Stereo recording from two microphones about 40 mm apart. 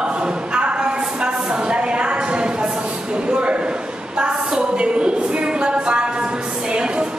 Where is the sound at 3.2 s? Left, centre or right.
Right.